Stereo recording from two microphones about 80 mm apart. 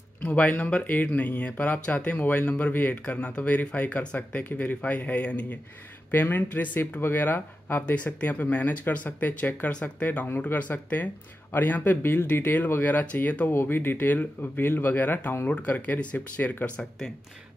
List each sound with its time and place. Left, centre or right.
0.2 s speech: centre
13.5 s speech: left